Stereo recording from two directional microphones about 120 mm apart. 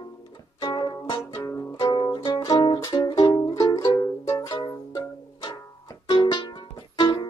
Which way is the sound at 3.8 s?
30° left (ahead or behind).